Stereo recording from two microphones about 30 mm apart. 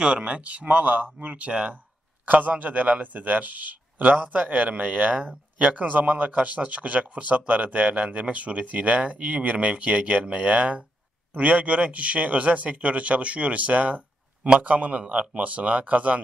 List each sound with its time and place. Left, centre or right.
0.0 s speech: right
0.4 s speech: right
1.1 s speech: right
2.2 s a man's voice: right